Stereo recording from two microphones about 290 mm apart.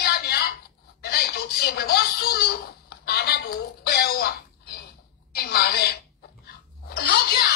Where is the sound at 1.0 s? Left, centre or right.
Left.